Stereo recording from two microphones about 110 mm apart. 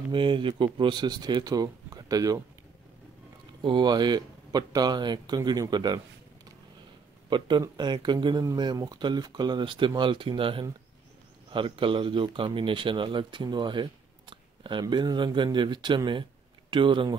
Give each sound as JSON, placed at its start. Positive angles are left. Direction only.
{"t": 0.1, "sound": "speech", "side_deg": -50}
{"t": 3.6, "sound": "speech", "side_deg": -40}
{"t": 7.2, "sound": "speech", "side_deg": -45}